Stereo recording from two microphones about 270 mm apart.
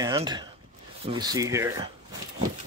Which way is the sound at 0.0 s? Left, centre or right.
Centre.